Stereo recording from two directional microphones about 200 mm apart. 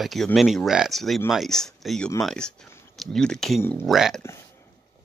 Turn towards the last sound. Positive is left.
turn(degrees=0)  # may be behind; listen again after turning